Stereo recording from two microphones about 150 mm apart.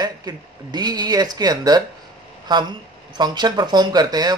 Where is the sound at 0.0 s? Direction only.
25° right (ahead or behind).